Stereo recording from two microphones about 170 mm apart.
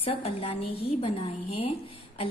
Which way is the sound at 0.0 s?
35° left (ahead or behind).